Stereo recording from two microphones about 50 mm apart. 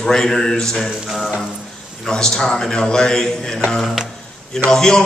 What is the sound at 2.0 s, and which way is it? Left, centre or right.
A man's voice, centre.